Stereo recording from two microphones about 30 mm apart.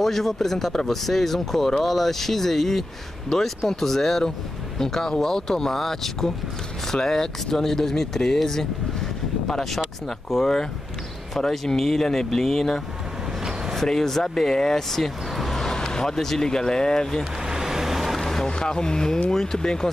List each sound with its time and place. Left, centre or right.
0.0 s speech: centre
13.4 s vehicle: centre
13.8 s speech: centre
14.9 s vehicle: centre
15.7 s basketball bounce: left
16.2 s speech: centre
16.4 s speech: left
17.2 s vehicle: centre
18.2 s a sound: left
19.3 s speech: centre